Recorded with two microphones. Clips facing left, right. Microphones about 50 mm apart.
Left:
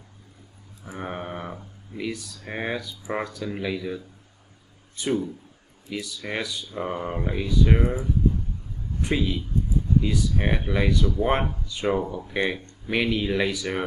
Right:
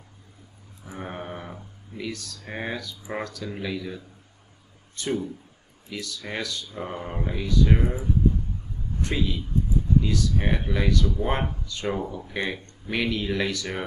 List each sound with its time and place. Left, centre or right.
0.9 s speech: centre
9.0 s speech: centre